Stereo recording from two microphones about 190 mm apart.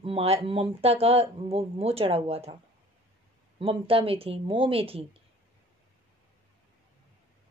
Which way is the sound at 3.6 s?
30° right (ahead or behind).